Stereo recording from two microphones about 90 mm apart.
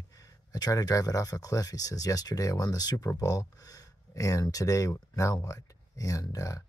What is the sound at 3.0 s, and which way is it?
Speech, 35° left (ahead or behind).